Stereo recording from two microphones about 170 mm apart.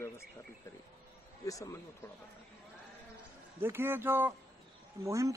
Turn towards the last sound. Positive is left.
turn(degrees=-20)  # may be behind; listen again after turning